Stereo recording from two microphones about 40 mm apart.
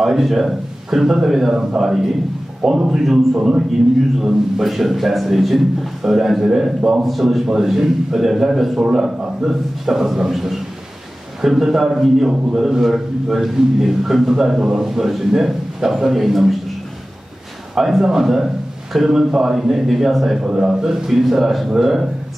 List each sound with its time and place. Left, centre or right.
0.0 s a man's voice: centre
4.2 s a man's voice: centre
7.4 s a man's voice: centre
17.7 s a man's voice: centre
20.3 s a man's voice: right
20.9 s a man's voice: centre